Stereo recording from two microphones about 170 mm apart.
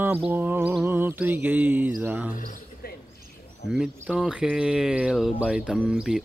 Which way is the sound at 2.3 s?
55° left (ahead or behind).